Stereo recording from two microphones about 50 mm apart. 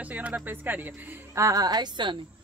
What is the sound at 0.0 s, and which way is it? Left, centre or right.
Speech, right.